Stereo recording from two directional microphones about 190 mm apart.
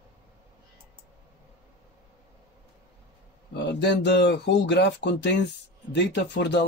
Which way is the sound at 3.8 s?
65° left (ahead or behind).